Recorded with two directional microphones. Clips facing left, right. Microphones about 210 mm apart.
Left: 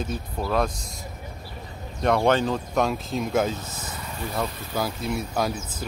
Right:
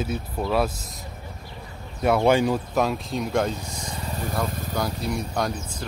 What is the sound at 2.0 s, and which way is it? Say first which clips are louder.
Speech: right 2 dB; 5° right (ahead or behind).